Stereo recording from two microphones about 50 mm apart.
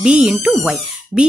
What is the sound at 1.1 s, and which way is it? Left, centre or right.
Speech, right.